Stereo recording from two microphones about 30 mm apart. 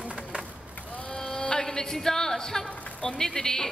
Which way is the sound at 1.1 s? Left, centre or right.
Left.